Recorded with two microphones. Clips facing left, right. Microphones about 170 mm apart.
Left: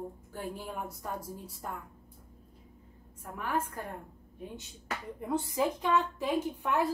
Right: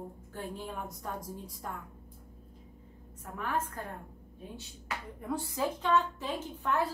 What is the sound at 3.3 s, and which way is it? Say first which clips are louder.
Speech: left 1 dB; 10° left (ahead or behind).